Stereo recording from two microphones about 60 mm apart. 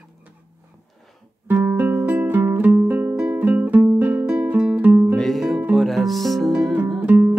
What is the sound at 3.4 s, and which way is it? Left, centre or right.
Music, right.